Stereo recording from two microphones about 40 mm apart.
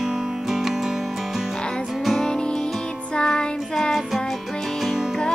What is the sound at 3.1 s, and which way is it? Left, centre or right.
Music, left.